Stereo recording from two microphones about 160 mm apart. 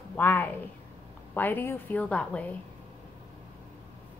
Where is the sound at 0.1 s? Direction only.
10° left (ahead or behind).